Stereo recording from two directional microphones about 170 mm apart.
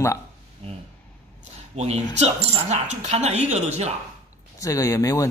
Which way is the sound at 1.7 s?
40° right (ahead or behind).